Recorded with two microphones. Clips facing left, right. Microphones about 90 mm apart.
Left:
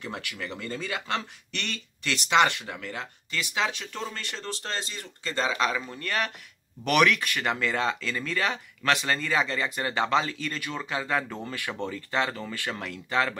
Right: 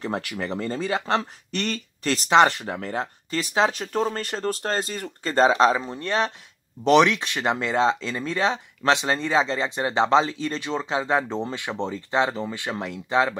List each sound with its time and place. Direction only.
0.0 s speech: 40° right (ahead or behind); by 13.4 s 20° right (ahead or behind)